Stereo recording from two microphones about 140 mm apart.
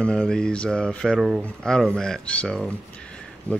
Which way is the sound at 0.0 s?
5° left (ahead or behind).